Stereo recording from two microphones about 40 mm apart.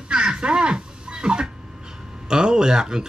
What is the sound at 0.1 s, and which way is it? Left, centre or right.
Music, right.